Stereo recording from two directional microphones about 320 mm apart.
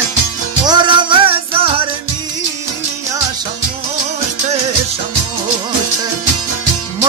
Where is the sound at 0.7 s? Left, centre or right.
Centre.